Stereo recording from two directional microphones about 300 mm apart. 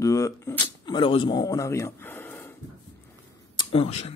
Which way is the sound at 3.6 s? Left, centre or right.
Centre.